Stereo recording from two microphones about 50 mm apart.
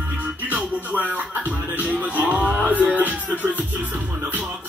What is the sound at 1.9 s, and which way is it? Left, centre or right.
Music, right.